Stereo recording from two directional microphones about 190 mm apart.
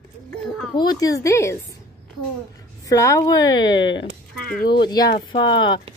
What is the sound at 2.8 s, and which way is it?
Speech, 15° left (ahead or behind).